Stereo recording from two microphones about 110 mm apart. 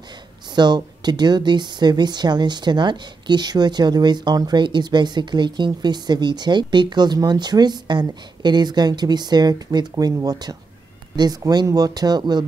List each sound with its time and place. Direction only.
0.6 s a woman's voice: 40° right (ahead or behind)